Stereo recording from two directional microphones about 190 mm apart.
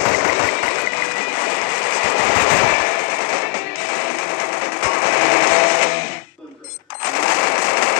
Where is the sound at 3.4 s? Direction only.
50° left (ahead or behind).